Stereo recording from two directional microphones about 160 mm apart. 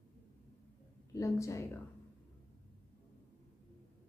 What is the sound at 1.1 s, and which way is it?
Speech, 20° left (ahead or behind).